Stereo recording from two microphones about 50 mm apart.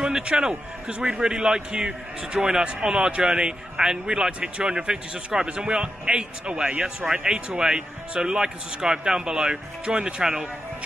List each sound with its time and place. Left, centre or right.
0.0 s a man's voice: centre